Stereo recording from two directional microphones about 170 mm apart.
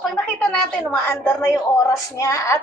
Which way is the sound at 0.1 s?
5° left (ahead or behind).